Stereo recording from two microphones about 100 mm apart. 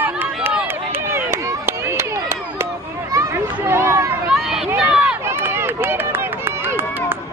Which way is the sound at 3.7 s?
25° right (ahead or behind).